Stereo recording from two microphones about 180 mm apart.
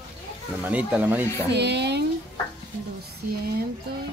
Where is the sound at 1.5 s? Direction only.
70° right (ahead or behind).